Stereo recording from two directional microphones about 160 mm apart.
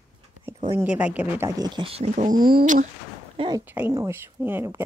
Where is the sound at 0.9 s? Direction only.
10° right (ahead or behind); by 2.8 s 60° right (ahead or behind).